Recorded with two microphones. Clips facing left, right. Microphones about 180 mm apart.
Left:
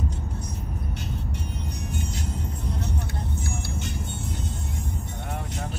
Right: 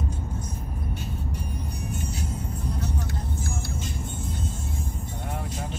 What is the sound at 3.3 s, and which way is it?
Vehicle, 70° left (ahead or behind).